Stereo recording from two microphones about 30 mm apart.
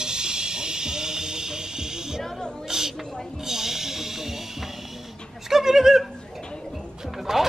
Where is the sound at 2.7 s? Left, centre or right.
Centre.